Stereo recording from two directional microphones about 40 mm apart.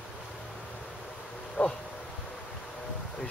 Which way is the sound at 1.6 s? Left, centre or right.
Left.